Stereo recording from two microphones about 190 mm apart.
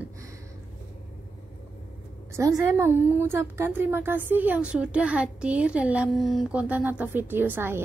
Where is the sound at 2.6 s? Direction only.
15° right (ahead or behind).